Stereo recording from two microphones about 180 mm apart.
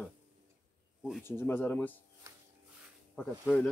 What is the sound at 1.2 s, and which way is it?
Speech, 10° left (ahead or behind).